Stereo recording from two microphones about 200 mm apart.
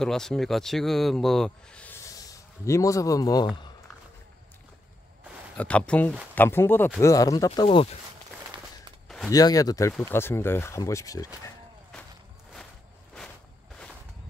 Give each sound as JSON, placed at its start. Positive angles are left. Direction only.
{"t": 0.0, "sound": "speech", "side_deg": 0}
{"t": 5.6, "sound": "speech", "side_deg": 5}
{"t": 7.6, "sound": "speech", "side_deg": 30}
{"t": 9.3, "sound": "speech", "side_deg": 20}